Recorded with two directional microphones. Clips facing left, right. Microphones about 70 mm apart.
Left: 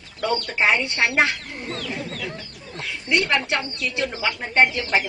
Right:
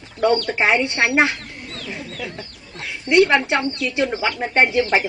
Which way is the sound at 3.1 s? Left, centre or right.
Right.